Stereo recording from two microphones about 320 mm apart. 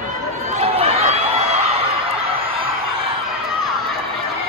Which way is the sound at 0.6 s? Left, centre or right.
Centre.